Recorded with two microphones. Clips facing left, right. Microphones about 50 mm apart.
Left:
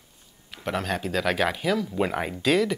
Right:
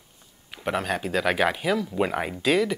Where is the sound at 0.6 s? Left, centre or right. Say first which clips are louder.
Right 1 dB; centre.